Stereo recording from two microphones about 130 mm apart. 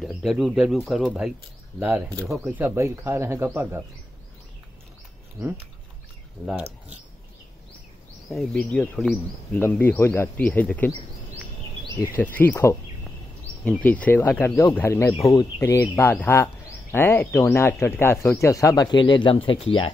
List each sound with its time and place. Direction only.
0.0 s speech: centre (ahead or behind)
2.2 s speech: centre (ahead or behind)
2.5 s speech: 20° right (ahead or behind)
8.3 s speech: 5° left (ahead or behind)
12.2 s speech: 15° left (ahead or behind); by 19.9 s 40° left (ahead or behind)